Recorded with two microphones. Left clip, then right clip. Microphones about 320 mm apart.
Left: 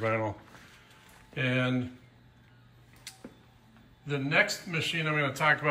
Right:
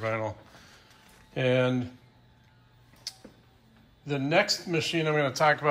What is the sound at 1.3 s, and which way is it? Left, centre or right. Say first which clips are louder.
Speech: right 5 dB; centre.